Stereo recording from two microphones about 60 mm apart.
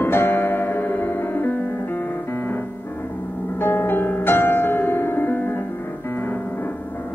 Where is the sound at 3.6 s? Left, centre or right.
Left.